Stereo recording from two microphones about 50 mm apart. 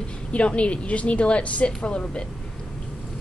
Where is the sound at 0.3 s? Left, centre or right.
Left.